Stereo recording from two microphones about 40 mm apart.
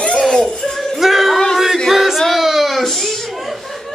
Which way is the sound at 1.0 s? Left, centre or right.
Centre.